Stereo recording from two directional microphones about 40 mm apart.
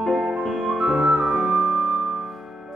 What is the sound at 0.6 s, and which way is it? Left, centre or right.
Music, centre.